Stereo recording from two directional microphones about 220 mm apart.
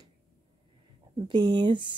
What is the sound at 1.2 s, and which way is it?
Speech, 20° right (ahead or behind).